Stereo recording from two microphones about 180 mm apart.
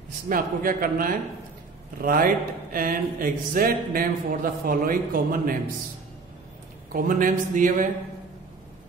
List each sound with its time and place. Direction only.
0.3 s speech: 50° right (ahead or behind)
6.9 s speech: 50° right (ahead or behind)